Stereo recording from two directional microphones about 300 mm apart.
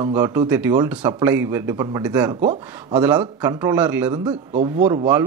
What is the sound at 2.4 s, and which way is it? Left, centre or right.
Speech, right.